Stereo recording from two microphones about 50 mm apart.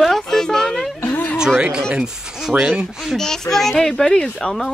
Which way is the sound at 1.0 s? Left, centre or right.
Left.